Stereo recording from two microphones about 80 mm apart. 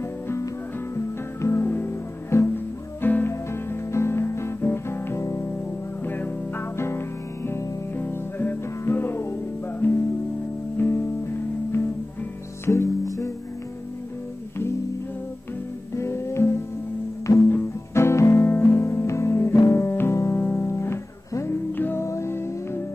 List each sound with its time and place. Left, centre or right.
0.9 s music: left
6.0 s music: left
7.4 s music: left
16.0 s music: left
21.7 s music: left
22.0 s music: left